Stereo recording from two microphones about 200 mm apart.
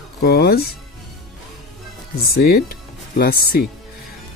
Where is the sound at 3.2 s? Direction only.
50° left (ahead or behind).